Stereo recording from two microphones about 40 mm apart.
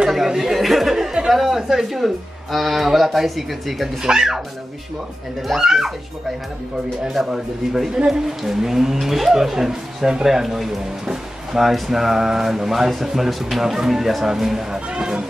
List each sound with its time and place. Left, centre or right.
0.3 s a sound: centre
1.3 s a man's voice: centre
4.0 s speech: centre
5.5 s speech: centre
7.1 s speech: centre
14.9 s speech: right